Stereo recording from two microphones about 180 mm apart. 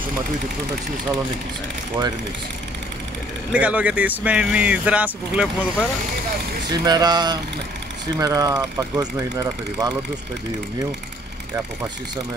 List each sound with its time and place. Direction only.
3.5 s speech: 10° right (ahead or behind)
6.7 s speech: 20° right (ahead or behind)